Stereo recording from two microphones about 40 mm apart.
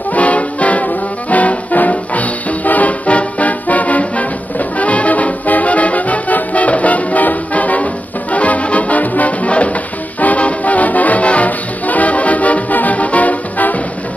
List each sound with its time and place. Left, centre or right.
0.1 s music: left